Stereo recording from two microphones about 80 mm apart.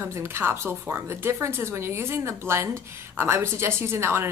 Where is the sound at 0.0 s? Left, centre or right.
Right.